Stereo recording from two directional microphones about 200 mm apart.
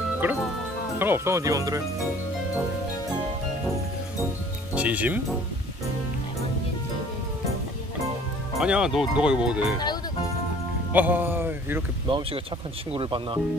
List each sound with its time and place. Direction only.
0.2 s speech: 10° right (ahead or behind)
4.7 s speech: 5° right (ahead or behind)
8.5 s speech: 5° right (ahead or behind)
10.9 s speech: 10° right (ahead or behind)
12.1 s speech: 25° right (ahead or behind)